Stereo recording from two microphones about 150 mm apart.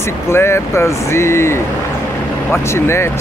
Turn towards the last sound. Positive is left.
turn(degrees=15)  # may be behind; listen again after turning